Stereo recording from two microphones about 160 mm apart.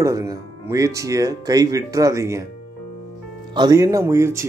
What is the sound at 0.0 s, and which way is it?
Speech, 20° right (ahead or behind).